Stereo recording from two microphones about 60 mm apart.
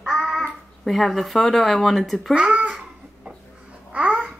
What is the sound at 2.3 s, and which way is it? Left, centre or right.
Babbling, right.